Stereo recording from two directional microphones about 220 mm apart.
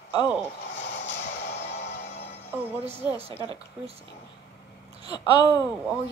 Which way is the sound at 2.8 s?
25° right (ahead or behind).